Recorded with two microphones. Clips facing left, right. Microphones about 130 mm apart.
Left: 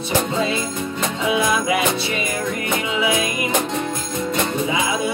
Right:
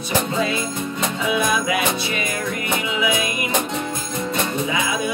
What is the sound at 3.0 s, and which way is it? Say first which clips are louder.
Music: left 2 dB; 35° left (ahead or behind).